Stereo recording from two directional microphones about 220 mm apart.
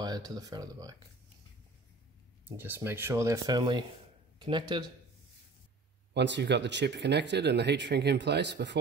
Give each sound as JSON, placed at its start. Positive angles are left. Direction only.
{"t": 0.0, "sound": "speech", "side_deg": -20}
{"t": 2.4, "sound": "speech", "side_deg": -10}
{"t": 6.1, "sound": "speech", "side_deg": -50}